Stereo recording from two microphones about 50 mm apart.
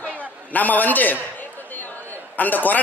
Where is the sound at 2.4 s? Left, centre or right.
Left.